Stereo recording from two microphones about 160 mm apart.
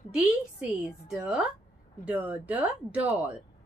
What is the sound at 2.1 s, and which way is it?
Speech, 10° right (ahead or behind).